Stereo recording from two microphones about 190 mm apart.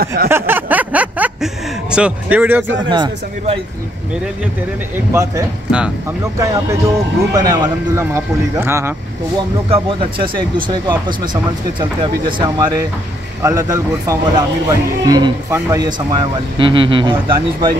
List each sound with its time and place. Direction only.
0.0 s a sound: 50° right (ahead or behind)
0.3 s a sound: 10° right (ahead or behind)
2.9 s speech: 25° right (ahead or behind)
4.9 s speech: 15° right (ahead or behind)
9.7 s speech: 25° right (ahead or behind)
12.4 s speech: 20° right (ahead or behind)